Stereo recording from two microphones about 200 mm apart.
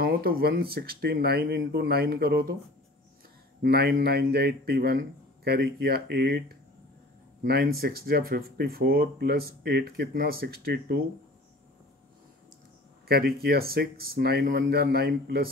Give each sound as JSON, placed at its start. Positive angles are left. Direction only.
{"t": 0.0, "sound": "speech", "side_deg": -50}
{"t": 3.6, "sound": "speech", "side_deg": -50}
{"t": 7.4, "sound": "speech", "side_deg": -50}
{"t": 13.1, "sound": "speech", "side_deg": -50}